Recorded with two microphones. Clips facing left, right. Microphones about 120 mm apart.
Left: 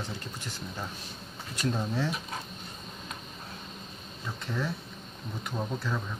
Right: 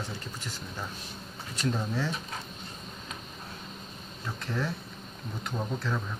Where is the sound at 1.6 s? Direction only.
15° left (ahead or behind).